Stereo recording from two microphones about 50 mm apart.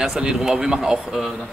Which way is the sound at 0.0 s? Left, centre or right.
Centre.